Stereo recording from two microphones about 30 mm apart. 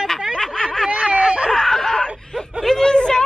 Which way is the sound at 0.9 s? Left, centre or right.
Right.